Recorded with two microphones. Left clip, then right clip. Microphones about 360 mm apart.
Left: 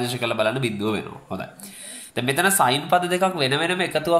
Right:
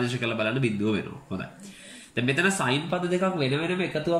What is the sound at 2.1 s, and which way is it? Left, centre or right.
Speech, centre.